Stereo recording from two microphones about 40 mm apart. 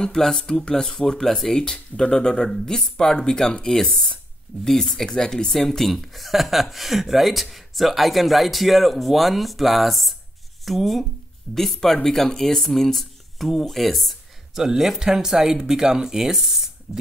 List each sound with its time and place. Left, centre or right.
0.0 s speech: centre
14.5 s speech: centre